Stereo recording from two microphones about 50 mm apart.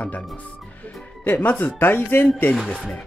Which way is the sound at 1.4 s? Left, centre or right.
Left.